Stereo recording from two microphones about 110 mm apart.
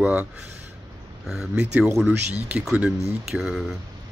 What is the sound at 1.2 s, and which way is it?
Speech, 5° right (ahead or behind).